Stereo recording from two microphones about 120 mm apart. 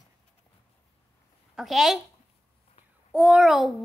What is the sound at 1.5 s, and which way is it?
Speech, centre (ahead or behind).